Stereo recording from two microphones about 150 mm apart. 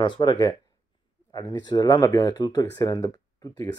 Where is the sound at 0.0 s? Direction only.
30° left (ahead or behind).